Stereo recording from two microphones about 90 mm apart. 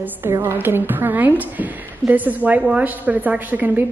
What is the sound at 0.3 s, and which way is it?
A woman's voice, 30° right (ahead or behind).